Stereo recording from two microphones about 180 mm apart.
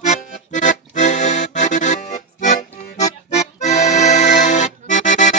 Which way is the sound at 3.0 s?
40° left (ahead or behind).